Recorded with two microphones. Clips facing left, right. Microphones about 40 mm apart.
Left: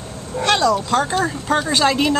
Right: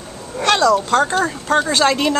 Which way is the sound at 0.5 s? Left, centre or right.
Centre.